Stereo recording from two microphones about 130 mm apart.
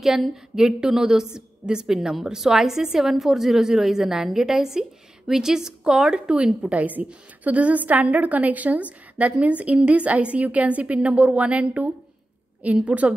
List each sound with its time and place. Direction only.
0.0 s a woman's voice: 5° right (ahead or behind)